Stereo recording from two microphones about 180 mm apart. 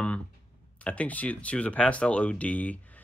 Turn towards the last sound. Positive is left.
turn(degrees=10)  # may be behind; listen again after turning